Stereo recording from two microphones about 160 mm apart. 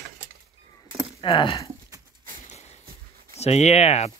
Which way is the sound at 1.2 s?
35° left (ahead or behind).